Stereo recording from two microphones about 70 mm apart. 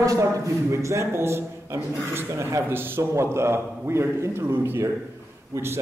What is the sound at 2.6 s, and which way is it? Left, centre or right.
A man's voice, right.